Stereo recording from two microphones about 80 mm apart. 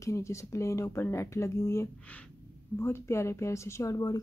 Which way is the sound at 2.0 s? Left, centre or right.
Centre.